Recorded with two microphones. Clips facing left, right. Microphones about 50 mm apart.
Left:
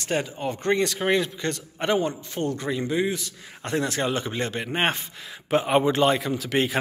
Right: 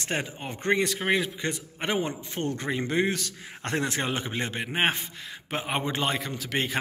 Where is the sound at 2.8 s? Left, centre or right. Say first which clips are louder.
Even; right.